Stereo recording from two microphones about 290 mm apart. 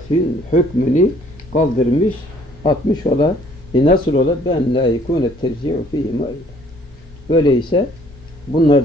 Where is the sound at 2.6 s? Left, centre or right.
Centre.